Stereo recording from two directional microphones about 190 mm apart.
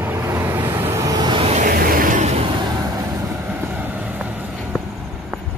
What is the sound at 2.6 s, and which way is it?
Vehicle, 15° right (ahead or behind).